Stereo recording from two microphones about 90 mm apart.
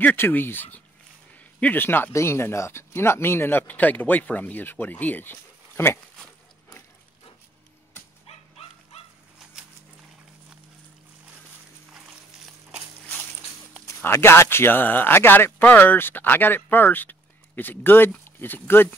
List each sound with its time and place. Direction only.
0.0 s speech: 20° left (ahead or behind)
13.8 s speech: 30° left (ahead or behind)